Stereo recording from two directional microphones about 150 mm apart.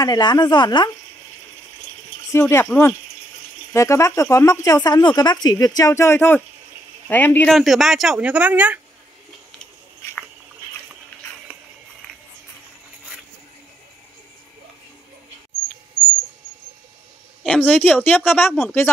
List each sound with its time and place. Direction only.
0.0 s speech: 25° left (ahead or behind)
2.3 s speech: 15° left (ahead or behind)
7.4 s speech: centre (ahead or behind)
17.5 s speech: 10° left (ahead or behind)